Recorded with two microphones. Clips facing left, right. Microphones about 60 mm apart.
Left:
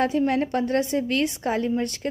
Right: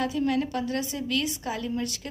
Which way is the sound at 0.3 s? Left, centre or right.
Left.